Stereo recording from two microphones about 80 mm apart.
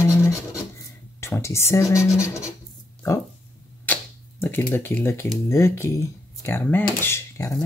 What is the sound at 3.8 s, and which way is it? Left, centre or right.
Camera, left.